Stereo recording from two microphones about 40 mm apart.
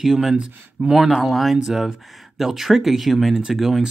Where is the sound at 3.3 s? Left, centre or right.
Centre.